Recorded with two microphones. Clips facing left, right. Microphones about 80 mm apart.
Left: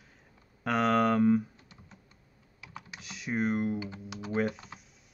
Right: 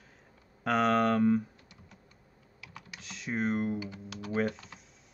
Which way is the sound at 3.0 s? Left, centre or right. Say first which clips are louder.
Left 1 dB; centre.